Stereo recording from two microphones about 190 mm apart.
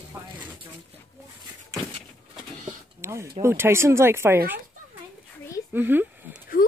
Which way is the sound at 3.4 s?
15° right (ahead or behind).